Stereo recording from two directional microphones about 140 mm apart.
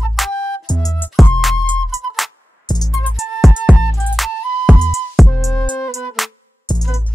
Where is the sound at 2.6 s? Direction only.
25° left (ahead or behind).